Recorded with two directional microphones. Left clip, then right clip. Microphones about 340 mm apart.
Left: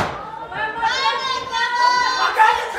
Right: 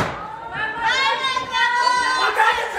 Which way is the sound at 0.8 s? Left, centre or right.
Centre.